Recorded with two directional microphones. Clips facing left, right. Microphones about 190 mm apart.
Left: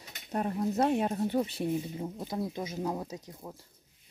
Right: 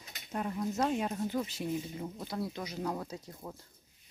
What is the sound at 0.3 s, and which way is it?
Speech, 35° left (ahead or behind).